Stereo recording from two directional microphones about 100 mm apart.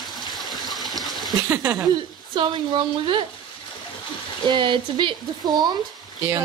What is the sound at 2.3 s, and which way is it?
Speech, 55° right (ahead or behind).